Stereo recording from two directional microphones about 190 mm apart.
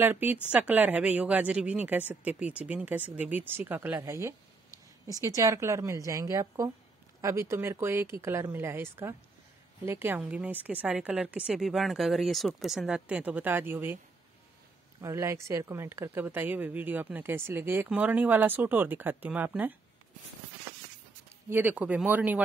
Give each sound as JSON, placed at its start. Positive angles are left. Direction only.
{"t": 0.0, "sound": "speech", "side_deg": -10}
{"t": 15.0, "sound": "speech", "side_deg": -15}
{"t": 21.5, "sound": "speech", "side_deg": -10}